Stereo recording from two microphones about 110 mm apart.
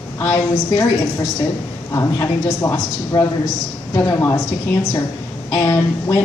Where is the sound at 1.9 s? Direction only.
25° left (ahead or behind).